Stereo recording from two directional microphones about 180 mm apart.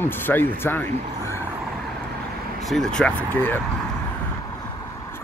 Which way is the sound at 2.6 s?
Centre (ahead or behind).